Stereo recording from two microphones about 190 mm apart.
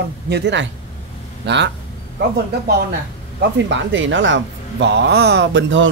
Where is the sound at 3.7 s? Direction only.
75° right (ahead or behind).